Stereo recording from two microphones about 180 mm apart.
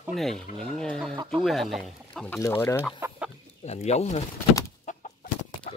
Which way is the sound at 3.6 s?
35° left (ahead or behind).